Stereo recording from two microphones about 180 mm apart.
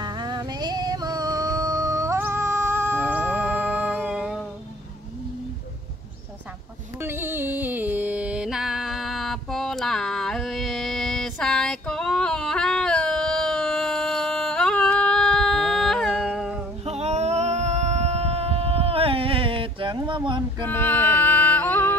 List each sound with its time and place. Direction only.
0.0 s music: 20° right (ahead or behind); by 4.5 s centre (ahead or behind)
7.0 s music: 10° right (ahead or behind)
16.8 s a sound: 35° right (ahead or behind)
20.6 s music: 10° left (ahead or behind)